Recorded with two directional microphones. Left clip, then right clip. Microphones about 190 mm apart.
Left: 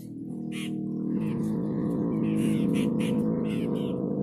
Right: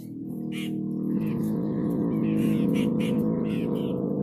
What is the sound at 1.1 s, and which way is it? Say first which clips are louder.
Music: right 1 dB; centre (ahead or behind).